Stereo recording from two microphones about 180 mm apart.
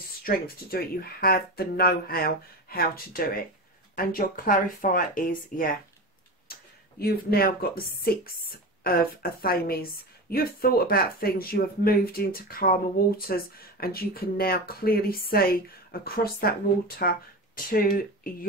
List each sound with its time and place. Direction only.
0.2 s speech: 55° left (ahead or behind)